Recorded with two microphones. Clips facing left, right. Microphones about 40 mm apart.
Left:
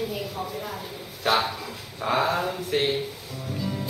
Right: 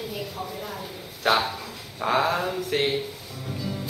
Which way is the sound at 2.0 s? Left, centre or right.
Centre.